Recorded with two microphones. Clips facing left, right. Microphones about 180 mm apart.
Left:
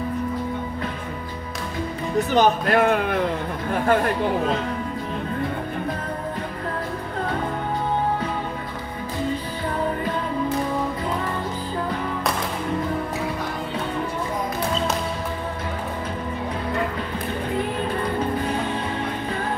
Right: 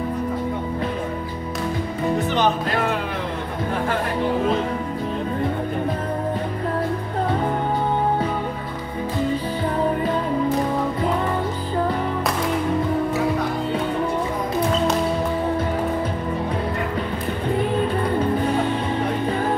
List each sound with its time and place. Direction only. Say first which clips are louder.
2.3 s speech: left 3 dB; 50° left (ahead or behind)